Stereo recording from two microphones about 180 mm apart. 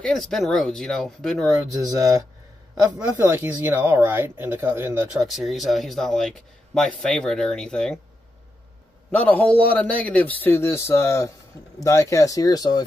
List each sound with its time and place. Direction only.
0.0 s speech: centre (ahead or behind)
1.7 s speech: 20° right (ahead or behind); by 8.0 s 5° left (ahead or behind)
9.1 s a man's voice: 10° left (ahead or behind)